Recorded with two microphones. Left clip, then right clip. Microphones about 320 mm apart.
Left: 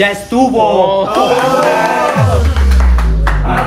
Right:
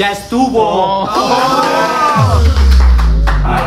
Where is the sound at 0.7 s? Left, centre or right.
Centre.